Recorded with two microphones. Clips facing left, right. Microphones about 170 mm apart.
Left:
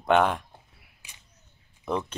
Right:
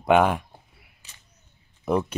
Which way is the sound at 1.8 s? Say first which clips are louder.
Right 5 dB; 10° right (ahead or behind).